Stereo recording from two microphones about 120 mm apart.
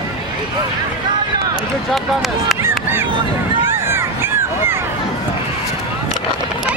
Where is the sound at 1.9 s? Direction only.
Centre (ahead or behind).